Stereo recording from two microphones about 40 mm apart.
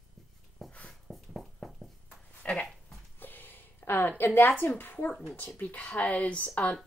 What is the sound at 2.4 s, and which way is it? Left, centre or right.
Speech, left.